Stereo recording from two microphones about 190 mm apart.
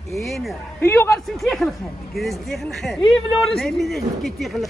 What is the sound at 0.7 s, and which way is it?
Speech, 15° left (ahead or behind).